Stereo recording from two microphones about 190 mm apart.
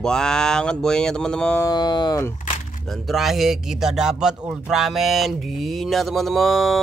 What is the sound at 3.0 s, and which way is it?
Speech, centre (ahead or behind).